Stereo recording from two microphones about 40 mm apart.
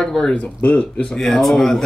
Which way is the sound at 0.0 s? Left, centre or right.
Centre.